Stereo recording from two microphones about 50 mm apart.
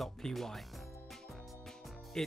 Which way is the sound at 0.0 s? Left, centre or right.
Centre.